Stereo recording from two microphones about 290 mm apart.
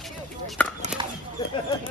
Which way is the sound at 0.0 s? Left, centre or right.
Centre.